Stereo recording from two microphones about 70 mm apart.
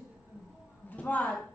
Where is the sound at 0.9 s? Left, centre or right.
Left.